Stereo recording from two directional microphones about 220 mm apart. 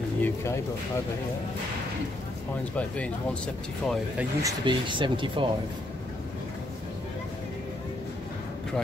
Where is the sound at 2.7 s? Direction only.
5° left (ahead or behind).